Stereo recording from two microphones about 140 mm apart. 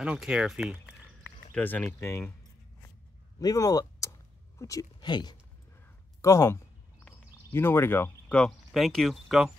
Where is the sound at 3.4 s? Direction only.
25° left (ahead or behind).